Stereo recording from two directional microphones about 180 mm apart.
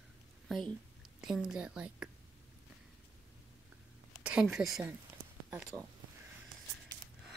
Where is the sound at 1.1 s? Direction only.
Centre (ahead or behind).